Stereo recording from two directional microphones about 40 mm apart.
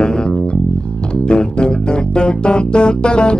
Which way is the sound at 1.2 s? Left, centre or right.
Left.